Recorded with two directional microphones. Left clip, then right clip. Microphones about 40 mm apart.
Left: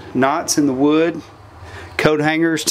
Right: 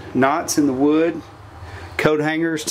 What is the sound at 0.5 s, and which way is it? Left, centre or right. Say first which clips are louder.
Speech: left 2 dB; left.